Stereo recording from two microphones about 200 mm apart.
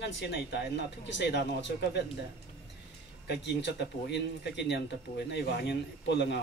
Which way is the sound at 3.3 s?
60° left (ahead or behind).